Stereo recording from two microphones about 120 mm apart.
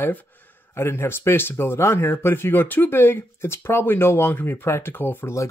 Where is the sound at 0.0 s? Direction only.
15° left (ahead or behind).